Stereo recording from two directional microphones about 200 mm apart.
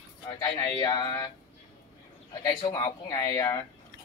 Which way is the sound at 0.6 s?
20° left (ahead or behind).